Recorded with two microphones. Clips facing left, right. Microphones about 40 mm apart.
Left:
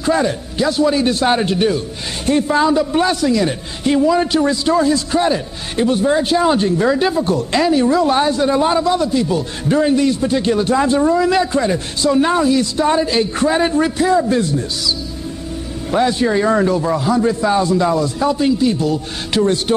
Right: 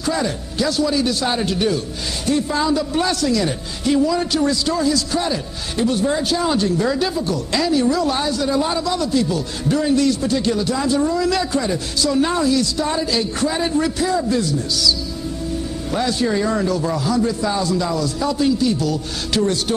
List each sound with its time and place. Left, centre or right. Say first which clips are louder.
0.0 s a man's voice: left 5 dB; left